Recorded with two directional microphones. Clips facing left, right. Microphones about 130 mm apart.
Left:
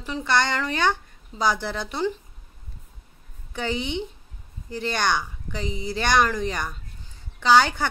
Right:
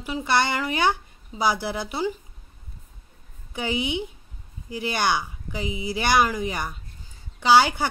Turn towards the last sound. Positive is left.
turn(degrees=-10)  # may be behind; listen again after turning